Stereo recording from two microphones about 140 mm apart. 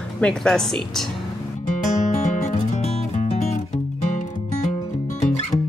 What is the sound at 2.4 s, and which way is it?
Music, 55° left (ahead or behind).